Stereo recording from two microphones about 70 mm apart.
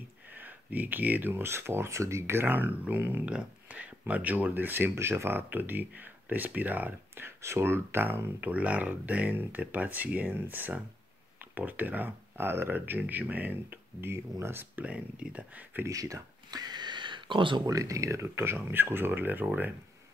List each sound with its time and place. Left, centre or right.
0.3 s a sound: right
1.3 s speech: right
2.4 s speech: right
3.3 s speech: centre
7.2 s speech: right
14.8 s speech: centre
15.8 s speech: right
17.6 s speech: right